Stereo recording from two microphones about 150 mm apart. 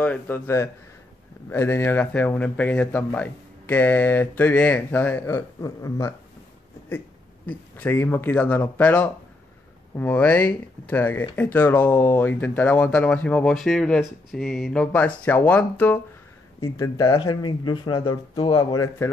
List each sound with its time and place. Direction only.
0.0 s speech: 10° left (ahead or behind)
7.4 s speech: 10° left (ahead or behind)